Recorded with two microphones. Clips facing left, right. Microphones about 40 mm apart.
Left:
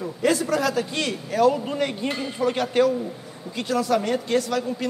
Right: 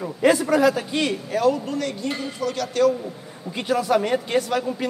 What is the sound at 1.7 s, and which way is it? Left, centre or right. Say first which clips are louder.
Speech: left 1 dB; left.